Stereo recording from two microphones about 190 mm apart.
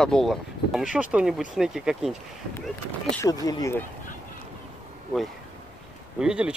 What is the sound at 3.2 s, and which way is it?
Speech, 20° left (ahead or behind).